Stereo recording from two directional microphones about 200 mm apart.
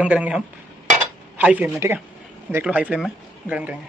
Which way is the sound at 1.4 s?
10° right (ahead or behind).